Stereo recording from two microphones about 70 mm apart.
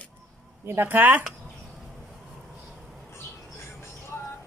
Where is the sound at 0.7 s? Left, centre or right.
Right.